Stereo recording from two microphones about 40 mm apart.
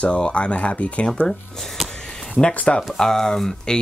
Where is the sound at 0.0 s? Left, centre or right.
Left.